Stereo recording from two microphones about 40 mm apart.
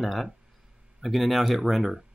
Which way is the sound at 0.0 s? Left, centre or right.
Centre.